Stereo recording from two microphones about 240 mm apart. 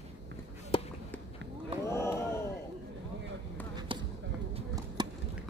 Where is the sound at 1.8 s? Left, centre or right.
Centre.